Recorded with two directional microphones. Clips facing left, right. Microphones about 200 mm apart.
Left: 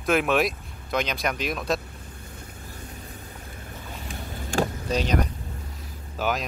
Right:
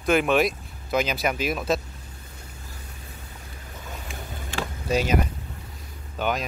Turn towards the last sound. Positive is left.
turn(degrees=0)  # may be behind; listen again after turning